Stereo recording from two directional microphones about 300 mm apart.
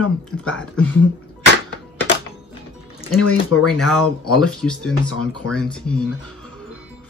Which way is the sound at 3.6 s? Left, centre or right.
Centre.